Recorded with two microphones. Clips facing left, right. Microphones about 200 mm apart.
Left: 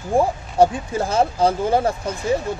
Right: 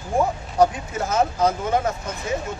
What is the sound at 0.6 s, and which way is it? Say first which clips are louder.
Speech: left 3 dB; 30° left (ahead or behind).